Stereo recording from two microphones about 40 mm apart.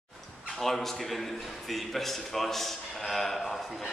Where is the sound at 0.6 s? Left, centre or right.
Centre.